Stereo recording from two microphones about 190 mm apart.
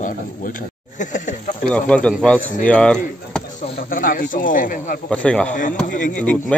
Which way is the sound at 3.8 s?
45° left (ahead or behind).